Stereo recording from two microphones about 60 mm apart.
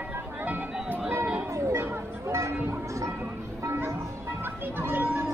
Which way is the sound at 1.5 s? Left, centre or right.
Right.